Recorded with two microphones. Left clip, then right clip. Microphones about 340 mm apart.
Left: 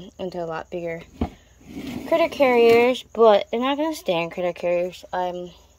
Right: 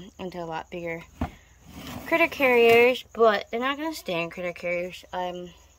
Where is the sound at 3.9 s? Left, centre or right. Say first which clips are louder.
Left 6 dB; right.